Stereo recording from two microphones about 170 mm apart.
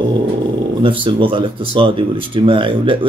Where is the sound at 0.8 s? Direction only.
30° right (ahead or behind).